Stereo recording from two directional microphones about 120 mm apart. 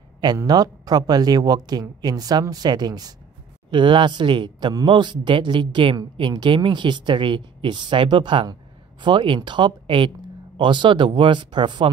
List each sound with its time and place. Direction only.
0.5 s speech: 35° right (ahead or behind)